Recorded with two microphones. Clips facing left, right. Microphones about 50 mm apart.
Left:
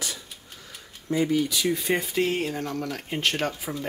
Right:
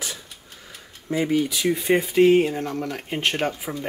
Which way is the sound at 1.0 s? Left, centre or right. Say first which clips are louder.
Right 2 dB; centre.